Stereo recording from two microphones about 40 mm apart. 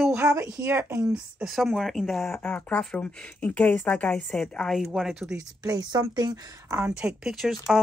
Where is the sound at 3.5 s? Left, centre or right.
Left.